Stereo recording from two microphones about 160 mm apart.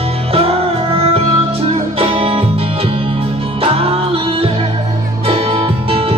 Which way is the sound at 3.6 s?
35° right (ahead or behind).